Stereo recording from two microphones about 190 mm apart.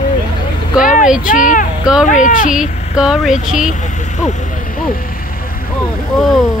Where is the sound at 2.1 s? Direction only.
45° left (ahead or behind).